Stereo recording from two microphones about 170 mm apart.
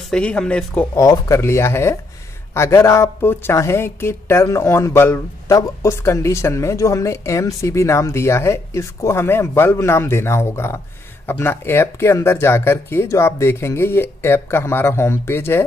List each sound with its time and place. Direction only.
0.1 s speech: 5° left (ahead or behind)
0.9 s speech: 20° left (ahead or behind)